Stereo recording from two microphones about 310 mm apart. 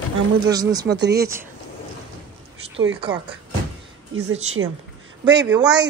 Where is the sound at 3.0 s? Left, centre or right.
Centre.